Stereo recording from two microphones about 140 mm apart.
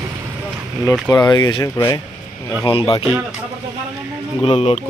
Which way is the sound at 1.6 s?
20° left (ahead or behind).